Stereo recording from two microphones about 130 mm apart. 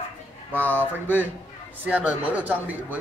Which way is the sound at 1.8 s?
10° right (ahead or behind).